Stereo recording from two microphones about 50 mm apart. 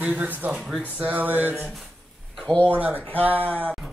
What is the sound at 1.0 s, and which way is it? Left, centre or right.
Speech, right.